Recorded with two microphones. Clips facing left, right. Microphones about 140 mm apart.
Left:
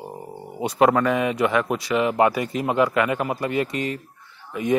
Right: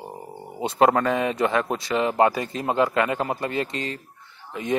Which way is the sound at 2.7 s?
25° right (ahead or behind).